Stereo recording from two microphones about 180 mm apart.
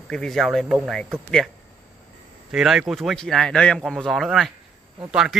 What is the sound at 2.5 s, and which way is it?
A man's voice, centre (ahead or behind).